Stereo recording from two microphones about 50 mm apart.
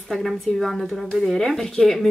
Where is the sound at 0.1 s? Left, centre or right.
Centre.